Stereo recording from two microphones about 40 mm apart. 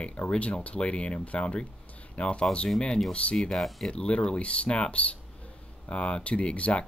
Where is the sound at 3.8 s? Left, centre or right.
Left.